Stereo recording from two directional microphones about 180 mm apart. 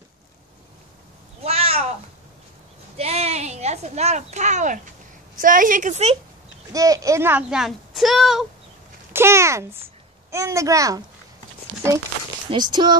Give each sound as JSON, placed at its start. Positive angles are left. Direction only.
{"t": 1.4, "sound": "a sound", "side_deg": -35}
{"t": 3.0, "sound": "a sound", "side_deg": -35}
{"t": 5.4, "sound": "a woman's voice", "side_deg": -50}
{"t": 6.7, "sound": "speech", "side_deg": -20}
{"t": 9.1, "sound": "a child's voice", "side_deg": -15}
{"t": 12.4, "sound": "speech", "side_deg": -25}